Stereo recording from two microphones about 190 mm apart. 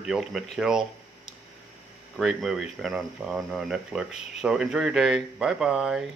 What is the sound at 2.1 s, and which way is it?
Speech, centre (ahead or behind).